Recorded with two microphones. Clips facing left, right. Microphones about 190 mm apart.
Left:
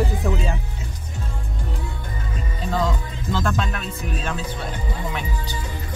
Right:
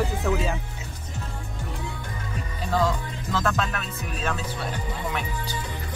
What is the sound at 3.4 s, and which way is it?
Speech, centre (ahead or behind).